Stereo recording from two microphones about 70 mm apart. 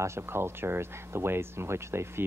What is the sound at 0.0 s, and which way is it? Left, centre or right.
Speech, right.